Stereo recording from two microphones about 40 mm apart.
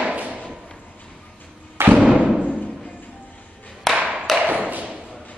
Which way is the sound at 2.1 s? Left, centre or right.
Centre.